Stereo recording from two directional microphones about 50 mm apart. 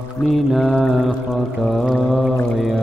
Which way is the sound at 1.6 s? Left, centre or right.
Centre.